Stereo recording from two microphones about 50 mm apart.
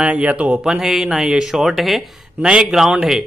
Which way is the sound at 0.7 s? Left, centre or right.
Centre.